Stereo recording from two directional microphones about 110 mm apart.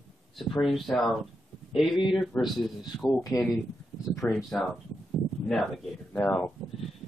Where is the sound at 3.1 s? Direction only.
30° left (ahead or behind).